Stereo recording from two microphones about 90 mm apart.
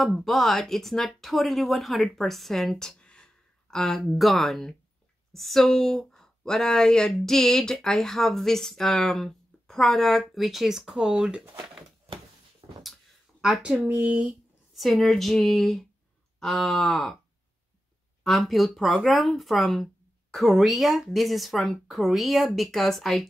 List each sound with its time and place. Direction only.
0.0 s speech: centre (ahead or behind)
11.5 s a sound: 65° right (ahead or behind)
12.8 s a sound: centre (ahead or behind)
13.6 s speech: 15° right (ahead or behind)
14.8 s speech: centre (ahead or behind)
18.2 s speech: centre (ahead or behind)